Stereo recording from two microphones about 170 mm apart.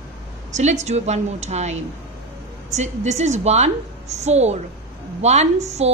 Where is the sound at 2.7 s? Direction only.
40° right (ahead or behind).